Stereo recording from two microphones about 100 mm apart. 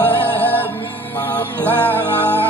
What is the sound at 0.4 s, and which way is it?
Music, 20° left (ahead or behind).